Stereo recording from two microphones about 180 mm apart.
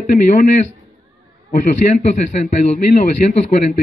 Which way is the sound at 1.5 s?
45° left (ahead or behind).